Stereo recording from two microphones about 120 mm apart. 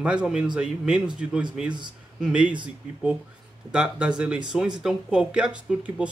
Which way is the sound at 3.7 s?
10° right (ahead or behind).